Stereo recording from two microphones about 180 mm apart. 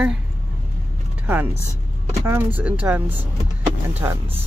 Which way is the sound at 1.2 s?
10° right (ahead or behind).